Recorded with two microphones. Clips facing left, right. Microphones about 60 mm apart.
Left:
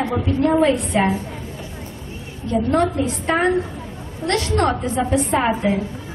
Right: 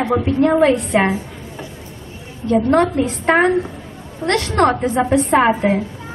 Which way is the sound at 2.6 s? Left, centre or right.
Right.